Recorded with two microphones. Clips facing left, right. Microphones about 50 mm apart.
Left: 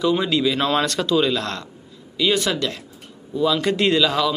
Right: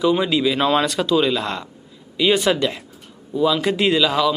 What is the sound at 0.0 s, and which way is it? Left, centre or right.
Speech, centre.